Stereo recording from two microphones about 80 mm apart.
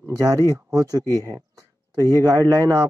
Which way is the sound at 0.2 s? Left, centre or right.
Right.